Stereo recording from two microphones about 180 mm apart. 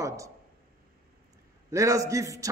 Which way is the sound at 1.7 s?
15° right (ahead or behind).